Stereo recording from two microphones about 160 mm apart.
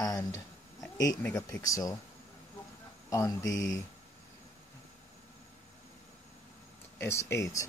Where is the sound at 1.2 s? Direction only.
15° left (ahead or behind).